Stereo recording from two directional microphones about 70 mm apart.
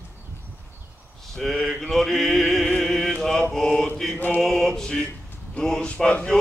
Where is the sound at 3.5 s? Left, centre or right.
Centre.